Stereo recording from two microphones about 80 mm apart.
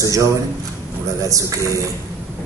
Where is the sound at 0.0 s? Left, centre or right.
Right.